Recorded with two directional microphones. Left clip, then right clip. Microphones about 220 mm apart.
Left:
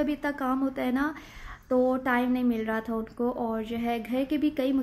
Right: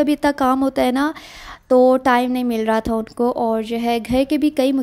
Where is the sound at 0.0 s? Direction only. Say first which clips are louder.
Right 12 dB; 40° right (ahead or behind).